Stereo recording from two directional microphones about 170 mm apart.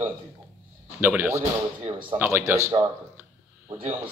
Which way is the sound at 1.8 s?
30° right (ahead or behind).